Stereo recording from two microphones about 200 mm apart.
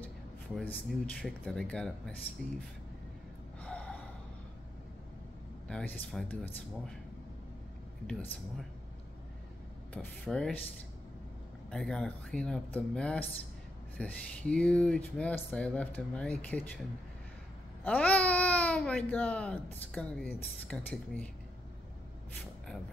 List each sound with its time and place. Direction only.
0.6 s speech: 5° left (ahead or behind)
3.6 s gasp: 5° left (ahead or behind)
5.7 s speech: 5° left (ahead or behind)
9.9 s speech: 5° left (ahead or behind)
11.7 s speech: 5° left (ahead or behind)
17.8 s speech: 5° left (ahead or behind)